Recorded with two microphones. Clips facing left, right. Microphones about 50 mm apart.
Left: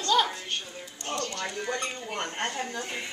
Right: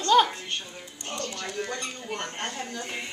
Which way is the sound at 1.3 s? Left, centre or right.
Centre.